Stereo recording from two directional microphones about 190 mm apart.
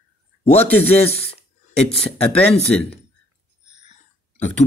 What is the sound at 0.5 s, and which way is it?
Speech, 10° left (ahead or behind).